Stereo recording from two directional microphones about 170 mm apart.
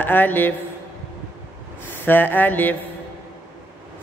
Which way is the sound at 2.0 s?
10° left (ahead or behind).